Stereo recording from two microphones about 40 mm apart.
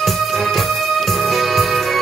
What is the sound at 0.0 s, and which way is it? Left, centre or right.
Music, centre.